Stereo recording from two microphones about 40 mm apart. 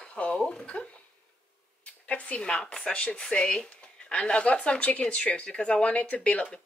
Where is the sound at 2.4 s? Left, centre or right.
Left.